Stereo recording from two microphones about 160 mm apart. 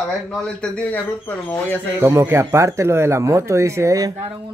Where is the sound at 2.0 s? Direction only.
15° right (ahead or behind).